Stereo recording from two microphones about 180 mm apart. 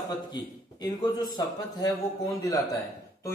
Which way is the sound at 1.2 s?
20° left (ahead or behind).